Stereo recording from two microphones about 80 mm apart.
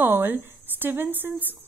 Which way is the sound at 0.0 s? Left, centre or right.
Right.